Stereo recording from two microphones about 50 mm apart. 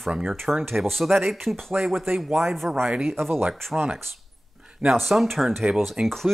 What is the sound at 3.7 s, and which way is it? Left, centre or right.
Speech, right.